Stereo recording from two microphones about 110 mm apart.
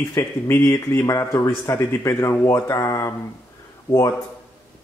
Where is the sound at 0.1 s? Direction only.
20° left (ahead or behind).